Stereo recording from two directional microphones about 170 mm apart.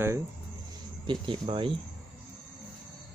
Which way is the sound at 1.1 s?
30° right (ahead or behind).